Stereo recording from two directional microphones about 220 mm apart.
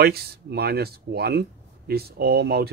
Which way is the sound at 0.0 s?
45° right (ahead or behind).